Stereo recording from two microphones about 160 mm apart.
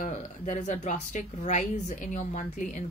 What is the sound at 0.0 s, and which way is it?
A woman's voice, 50° left (ahead or behind).